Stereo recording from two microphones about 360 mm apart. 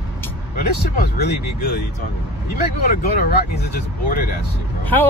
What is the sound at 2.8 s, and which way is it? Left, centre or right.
Speech, left.